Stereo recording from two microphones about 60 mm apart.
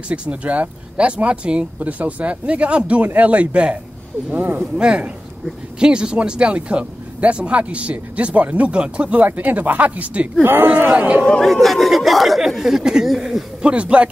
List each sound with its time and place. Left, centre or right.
0.1 s speech: right
4.7 s speech: centre
10.4 s speech: right
11.4 s speech: centre
13.6 s speech: centre